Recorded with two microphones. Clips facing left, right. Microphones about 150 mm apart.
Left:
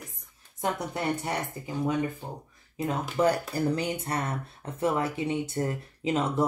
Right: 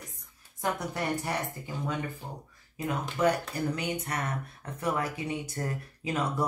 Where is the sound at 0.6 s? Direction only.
25° left (ahead or behind).